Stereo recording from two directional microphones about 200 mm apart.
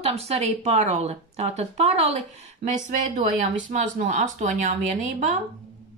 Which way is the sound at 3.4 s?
40° right (ahead or behind).